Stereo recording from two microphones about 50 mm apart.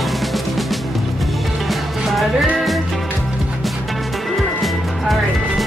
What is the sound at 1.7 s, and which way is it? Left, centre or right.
Music, centre.